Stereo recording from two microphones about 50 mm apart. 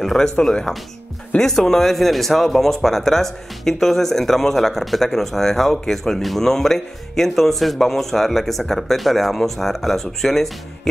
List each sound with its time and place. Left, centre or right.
0.0 s speech: centre